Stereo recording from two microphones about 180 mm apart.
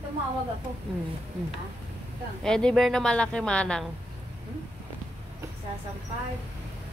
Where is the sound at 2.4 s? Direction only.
5° left (ahead or behind).